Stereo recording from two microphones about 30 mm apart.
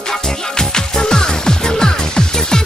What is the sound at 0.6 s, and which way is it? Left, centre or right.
Music, left.